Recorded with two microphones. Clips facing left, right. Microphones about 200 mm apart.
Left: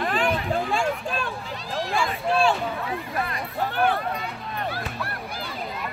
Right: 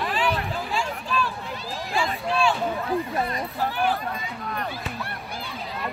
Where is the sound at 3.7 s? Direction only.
60° left (ahead or behind).